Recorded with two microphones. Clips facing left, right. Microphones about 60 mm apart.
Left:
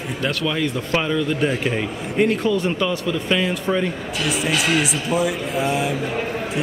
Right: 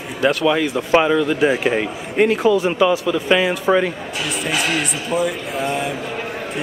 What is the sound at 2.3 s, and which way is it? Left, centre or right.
A man's voice, centre.